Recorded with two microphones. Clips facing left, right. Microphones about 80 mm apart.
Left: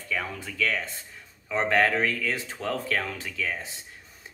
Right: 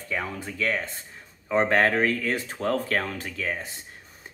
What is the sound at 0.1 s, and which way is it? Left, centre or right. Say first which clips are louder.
Speech: right 1 dB; right.